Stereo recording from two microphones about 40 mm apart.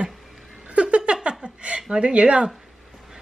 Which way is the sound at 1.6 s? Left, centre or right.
Right.